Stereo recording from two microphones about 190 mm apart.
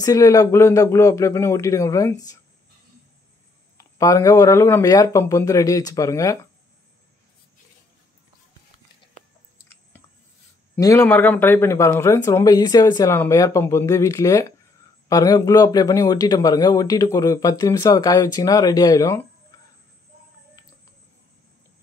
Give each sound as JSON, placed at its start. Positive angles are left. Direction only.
{"t": 0.0, "sound": "speech", "side_deg": 20}
{"t": 3.7, "sound": "speech", "side_deg": 20}
{"t": 10.8, "sound": "a man's voice", "side_deg": 15}
{"t": 20.6, "sound": "a sound", "side_deg": 20}